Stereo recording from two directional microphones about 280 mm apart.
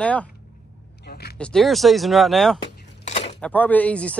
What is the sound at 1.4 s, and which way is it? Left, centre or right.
Speech, centre.